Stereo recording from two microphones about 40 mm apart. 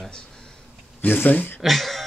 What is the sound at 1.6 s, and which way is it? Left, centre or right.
Speech, centre.